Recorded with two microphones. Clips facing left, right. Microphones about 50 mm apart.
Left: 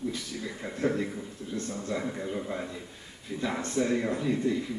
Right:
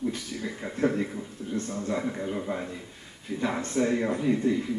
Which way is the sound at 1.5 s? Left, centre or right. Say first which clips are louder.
Right 3 dB; right.